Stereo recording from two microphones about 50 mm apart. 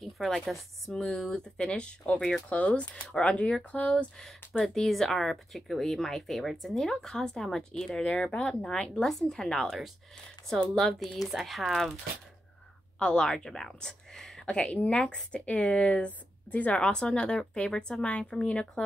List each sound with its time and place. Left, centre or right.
0.0 s speech: centre
0.9 s speech: centre
2.5 s speech: left
4.6 s speech: centre
8.0 s speech: left
9.0 s speech: centre
10.7 s speech: centre
13.0 s speech: centre
14.4 s speech: left
16.8 s speech: centre